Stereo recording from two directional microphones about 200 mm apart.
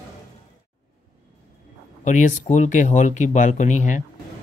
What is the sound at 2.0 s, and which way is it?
Speech, 40° left (ahead or behind).